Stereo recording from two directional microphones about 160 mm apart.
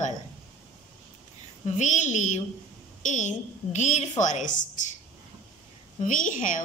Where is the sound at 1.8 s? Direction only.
50° left (ahead or behind).